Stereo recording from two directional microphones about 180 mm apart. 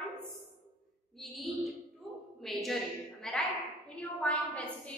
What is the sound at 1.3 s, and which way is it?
A woman's voice, centre (ahead or behind).